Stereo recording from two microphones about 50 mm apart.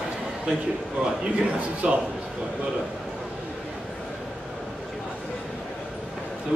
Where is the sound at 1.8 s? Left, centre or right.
Centre.